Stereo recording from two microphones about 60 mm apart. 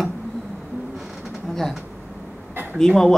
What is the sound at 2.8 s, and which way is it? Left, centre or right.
Speech, centre.